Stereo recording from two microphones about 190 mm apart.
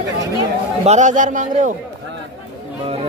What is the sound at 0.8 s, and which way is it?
Speech, 40° right (ahead or behind).